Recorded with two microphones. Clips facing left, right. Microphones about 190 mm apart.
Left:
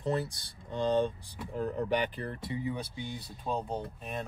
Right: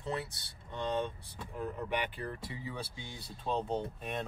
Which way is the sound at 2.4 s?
20° left (ahead or behind).